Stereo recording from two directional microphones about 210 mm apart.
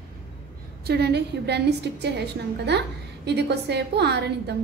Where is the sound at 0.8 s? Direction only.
50° right (ahead or behind).